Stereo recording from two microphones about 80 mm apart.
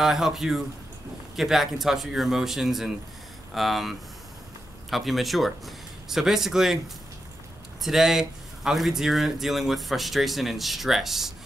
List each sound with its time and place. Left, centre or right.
0.0 s speech: centre
7.8 s speech: centre